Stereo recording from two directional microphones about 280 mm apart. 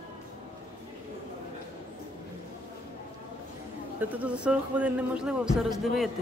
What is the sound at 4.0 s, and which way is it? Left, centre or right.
Speech, centre.